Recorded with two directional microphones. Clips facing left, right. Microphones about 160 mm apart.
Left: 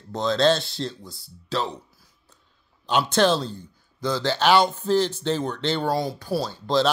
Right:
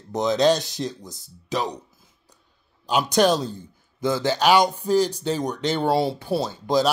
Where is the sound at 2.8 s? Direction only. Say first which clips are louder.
Right 1 dB; 10° right (ahead or behind).